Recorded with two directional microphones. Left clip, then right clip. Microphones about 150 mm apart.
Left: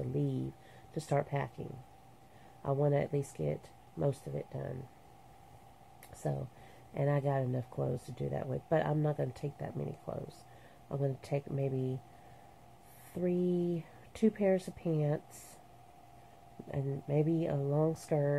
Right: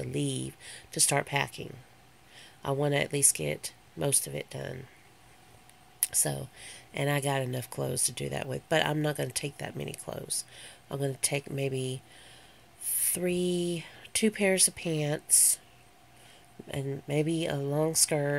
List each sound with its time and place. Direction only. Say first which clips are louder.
0.1 s speech: right 4 dB; 15° right (ahead or behind)
1.0 s speech: right 6 dB; 30° right (ahead or behind)
2.6 s speech: right 3 dB; 30° right (ahead or behind)
6.0 s speech: right 6 dB; 20° right (ahead or behind)
8.3 s speech: right 2 dB; 30° right (ahead or behind)
13.1 s speech: right 3 dB; 25° right (ahead or behind)
16.6 s speech: right 4 dB; 25° right (ahead or behind)